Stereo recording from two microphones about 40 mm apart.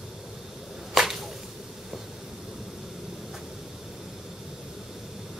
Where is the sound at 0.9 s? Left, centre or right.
Centre.